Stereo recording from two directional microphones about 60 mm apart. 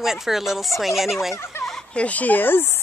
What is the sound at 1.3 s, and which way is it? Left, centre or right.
Speech, left.